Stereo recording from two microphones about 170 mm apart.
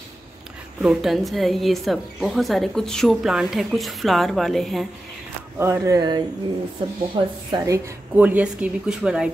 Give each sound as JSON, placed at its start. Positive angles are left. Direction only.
{"t": 0.8, "sound": "a woman's voice", "side_deg": 0}
{"t": 5.6, "sound": "a woman's voice", "side_deg": -15}